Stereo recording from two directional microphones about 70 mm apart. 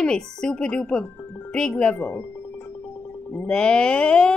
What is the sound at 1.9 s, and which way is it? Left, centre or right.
Music, left.